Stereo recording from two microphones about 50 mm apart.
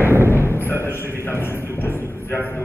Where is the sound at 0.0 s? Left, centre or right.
Right.